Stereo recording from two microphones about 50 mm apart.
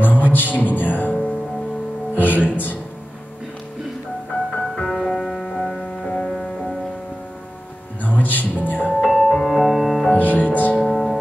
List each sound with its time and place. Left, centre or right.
0.0 s music: left
2.1 s music: left
4.3 s music: left
4.8 s music: centre
5.9 s music: left
6.3 s music: centre
8.0 s music: left
9.2 s music: centre
9.5 s music: centre
10.0 s music: left
10.8 s music: centre